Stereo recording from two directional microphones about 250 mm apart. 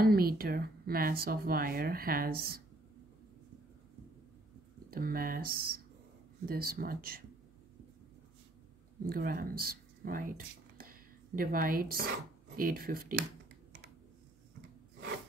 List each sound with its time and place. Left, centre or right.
0.0 s speech: right
4.9 s speech: right
9.0 s speech: right